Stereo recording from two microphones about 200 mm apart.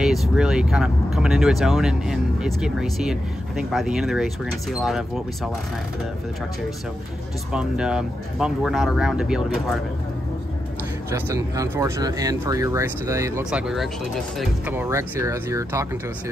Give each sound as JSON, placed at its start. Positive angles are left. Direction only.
{"t": 0.0, "sound": "speech", "side_deg": 0}
{"t": 7.5, "sound": "speech", "side_deg": -5}
{"t": 11.1, "sound": "speech", "side_deg": -15}
{"t": 13.5, "sound": "speech", "side_deg": -5}
{"t": 14.8, "sound": "speech", "side_deg": -15}